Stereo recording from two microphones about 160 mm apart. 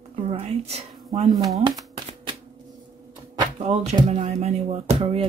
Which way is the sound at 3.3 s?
40° right (ahead or behind).